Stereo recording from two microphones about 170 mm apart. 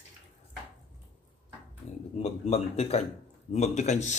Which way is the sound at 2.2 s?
35° left (ahead or behind).